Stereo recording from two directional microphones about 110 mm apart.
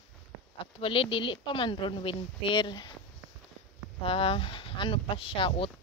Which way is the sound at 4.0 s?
55° left (ahead or behind).